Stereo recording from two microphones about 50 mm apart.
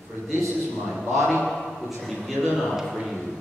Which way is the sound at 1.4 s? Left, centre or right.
Centre.